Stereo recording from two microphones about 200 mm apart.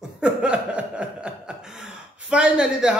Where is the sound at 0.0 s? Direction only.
5° right (ahead or behind).